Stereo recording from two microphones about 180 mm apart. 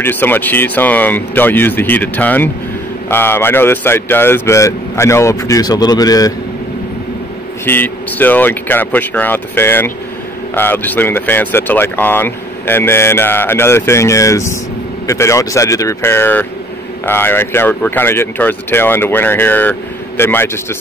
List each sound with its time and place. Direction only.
0.0 s speech: 10° left (ahead or behind)
7.6 s speech: 10° left (ahead or behind)